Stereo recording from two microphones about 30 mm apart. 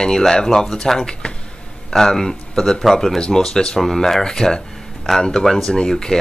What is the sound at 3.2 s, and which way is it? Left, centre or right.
Speech, left.